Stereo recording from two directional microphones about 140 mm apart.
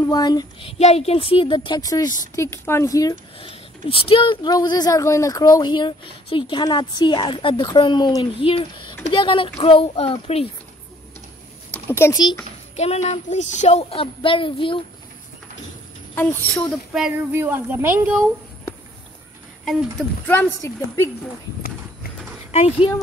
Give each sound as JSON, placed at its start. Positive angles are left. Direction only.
{"t": 0.1, "sound": "a woman's voice", "side_deg": 30}
{"t": 3.3, "sound": "speech", "side_deg": 40}
{"t": 11.9, "sound": "a woman's voice", "side_deg": 20}
{"t": 12.7, "sound": "speech", "side_deg": 50}
{"t": 16.2, "sound": "speech", "side_deg": 15}
{"t": 16.7, "sound": "a sound", "side_deg": 0}
{"t": 17.3, "sound": "speech", "side_deg": -15}
{"t": 19.6, "sound": "speech", "side_deg": 0}
{"t": 20.2, "sound": "speech", "side_deg": 15}
{"t": 22.5, "sound": "speech", "side_deg": 50}